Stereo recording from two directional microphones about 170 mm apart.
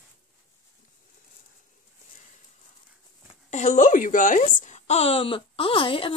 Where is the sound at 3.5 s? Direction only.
45° left (ahead or behind).